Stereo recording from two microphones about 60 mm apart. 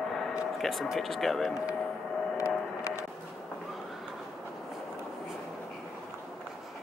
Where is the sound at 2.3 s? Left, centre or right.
Left.